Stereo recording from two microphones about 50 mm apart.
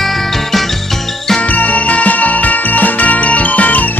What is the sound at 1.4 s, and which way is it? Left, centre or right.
Music, left.